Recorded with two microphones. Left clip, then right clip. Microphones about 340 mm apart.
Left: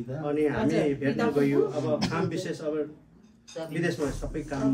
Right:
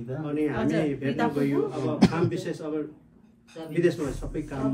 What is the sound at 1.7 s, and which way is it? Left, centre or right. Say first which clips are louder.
Speech: right 2 dB; centre.